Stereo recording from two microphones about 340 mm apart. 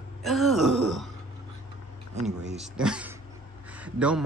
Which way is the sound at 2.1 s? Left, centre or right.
Centre.